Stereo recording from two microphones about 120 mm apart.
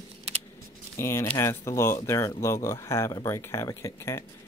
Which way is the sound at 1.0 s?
20° left (ahead or behind).